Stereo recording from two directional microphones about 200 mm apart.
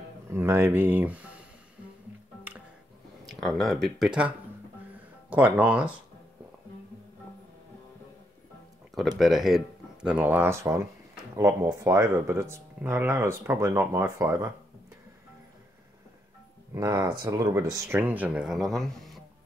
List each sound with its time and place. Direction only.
0.3 s speech: 10° right (ahead or behind)
3.3 s speech: centre (ahead or behind)
5.3 s speech: 5° right (ahead or behind)
9.2 s speech: centre (ahead or behind)
16.7 s speech: 15° right (ahead or behind); by 19.2 s centre (ahead or behind)